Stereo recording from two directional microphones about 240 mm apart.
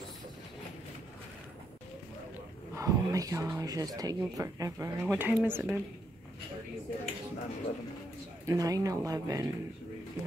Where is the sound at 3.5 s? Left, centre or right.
Centre.